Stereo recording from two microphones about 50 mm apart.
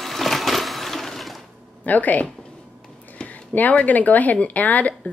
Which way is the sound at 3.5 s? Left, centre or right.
Left.